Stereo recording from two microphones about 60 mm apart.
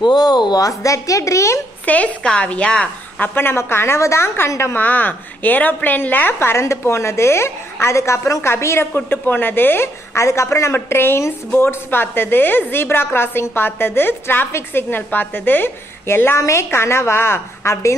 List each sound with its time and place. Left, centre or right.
0.2 s speech: left
1.9 s a woman's voice: left
3.2 s a woman's voice: left
4.7 s a woman's voice: left
6.5 s a woman's voice: left
8.9 s a woman's voice: left
10.1 s a woman's voice: left